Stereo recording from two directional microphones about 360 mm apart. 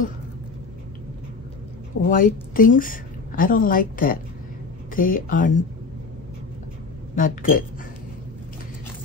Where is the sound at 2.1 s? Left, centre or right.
Left.